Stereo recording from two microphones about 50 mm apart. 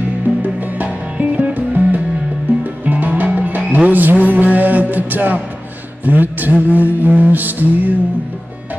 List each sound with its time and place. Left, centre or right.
0.4 s music: right
1.4 s music: right
6.0 s mantra: right